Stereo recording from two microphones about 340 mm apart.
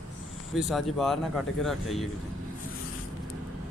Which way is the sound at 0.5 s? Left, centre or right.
Centre.